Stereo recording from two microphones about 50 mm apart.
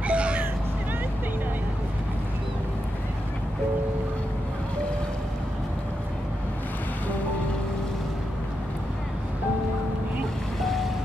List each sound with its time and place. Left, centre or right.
0.0 s vehicle: right